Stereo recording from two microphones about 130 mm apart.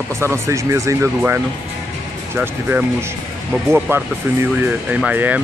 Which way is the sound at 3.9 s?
20° right (ahead or behind).